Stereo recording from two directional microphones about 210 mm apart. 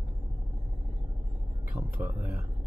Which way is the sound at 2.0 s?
10° right (ahead or behind).